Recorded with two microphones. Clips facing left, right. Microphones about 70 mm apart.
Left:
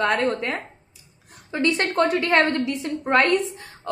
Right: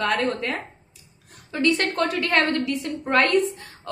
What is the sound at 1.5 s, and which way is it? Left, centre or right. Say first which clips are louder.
A woman's voice: even; centre.